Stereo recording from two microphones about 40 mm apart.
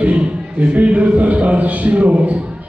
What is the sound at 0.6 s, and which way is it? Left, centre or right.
A man's voice, right.